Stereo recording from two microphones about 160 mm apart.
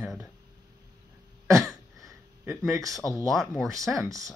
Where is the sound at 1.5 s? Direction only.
Centre (ahead or behind).